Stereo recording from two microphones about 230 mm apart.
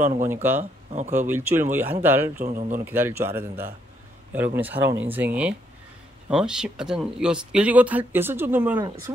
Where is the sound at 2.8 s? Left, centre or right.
Centre.